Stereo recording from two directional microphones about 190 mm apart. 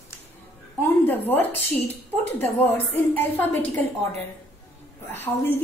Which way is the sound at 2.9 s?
10° left (ahead or behind).